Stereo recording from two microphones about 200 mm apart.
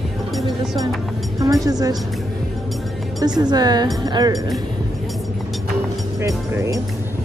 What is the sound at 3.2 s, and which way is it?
Speech, 20° right (ahead or behind).